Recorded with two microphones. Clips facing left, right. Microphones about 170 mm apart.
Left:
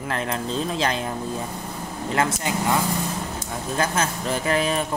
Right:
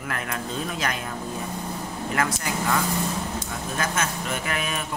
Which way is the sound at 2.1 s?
25° left (ahead or behind).